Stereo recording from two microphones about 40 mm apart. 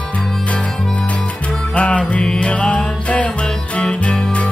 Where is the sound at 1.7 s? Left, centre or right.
Left.